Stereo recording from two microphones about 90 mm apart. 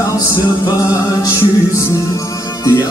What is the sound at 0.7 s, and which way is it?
Music, 40° left (ahead or behind).